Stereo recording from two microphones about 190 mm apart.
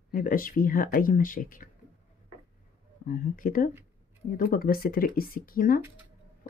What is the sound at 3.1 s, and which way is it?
Speech, 45° left (ahead or behind).